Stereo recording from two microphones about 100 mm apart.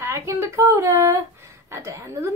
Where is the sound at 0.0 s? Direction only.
30° right (ahead or behind).